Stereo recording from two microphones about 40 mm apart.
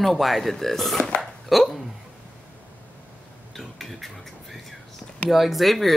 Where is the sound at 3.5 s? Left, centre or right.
Centre.